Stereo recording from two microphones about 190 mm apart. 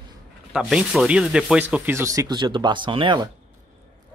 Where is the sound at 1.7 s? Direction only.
15° right (ahead or behind).